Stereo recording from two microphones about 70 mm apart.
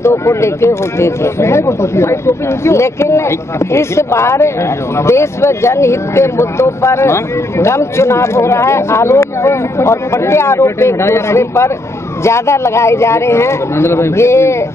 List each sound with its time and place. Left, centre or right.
0.0 s speech: left